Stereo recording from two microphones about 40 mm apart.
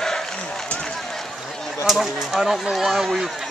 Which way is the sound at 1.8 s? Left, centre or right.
Centre.